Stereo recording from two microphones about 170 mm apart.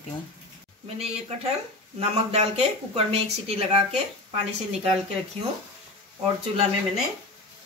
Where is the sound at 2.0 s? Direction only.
40° right (ahead or behind).